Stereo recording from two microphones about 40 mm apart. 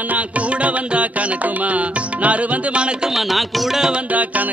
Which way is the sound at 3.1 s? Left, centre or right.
Centre.